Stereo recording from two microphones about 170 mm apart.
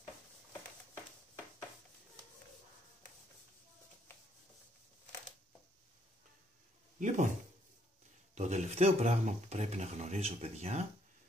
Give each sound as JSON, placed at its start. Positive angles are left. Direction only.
{"t": 7.0, "sound": "speech", "side_deg": -45}
{"t": 8.4, "sound": "speech", "side_deg": -40}